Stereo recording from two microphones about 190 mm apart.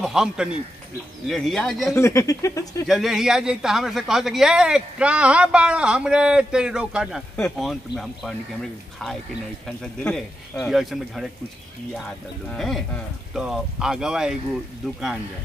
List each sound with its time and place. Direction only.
0.0 s speech: 5° right (ahead or behind)
2.0 s speech: 15° left (ahead or behind)
2.9 s speech: centre (ahead or behind)
9.7 s speech: 5° left (ahead or behind)